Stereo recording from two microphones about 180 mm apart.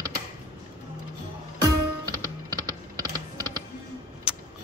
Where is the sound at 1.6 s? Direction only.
20° right (ahead or behind).